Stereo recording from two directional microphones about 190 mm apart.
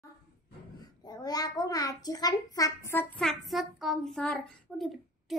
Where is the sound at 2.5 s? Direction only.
15° left (ahead or behind).